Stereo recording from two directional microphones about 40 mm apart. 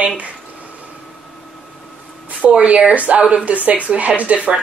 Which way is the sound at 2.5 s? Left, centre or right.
Right.